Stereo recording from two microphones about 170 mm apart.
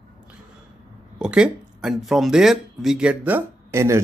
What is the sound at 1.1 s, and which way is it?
Speech, 5° right (ahead or behind).